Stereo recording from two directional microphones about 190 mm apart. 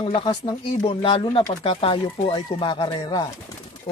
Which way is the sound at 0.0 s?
25° left (ahead or behind).